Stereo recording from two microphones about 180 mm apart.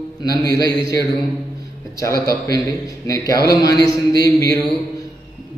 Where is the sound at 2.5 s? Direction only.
20° left (ahead or behind).